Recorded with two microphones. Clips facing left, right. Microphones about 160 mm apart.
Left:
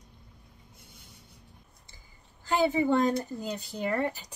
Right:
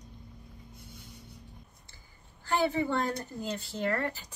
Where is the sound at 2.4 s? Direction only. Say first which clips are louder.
Left 3 dB; 15° left (ahead or behind).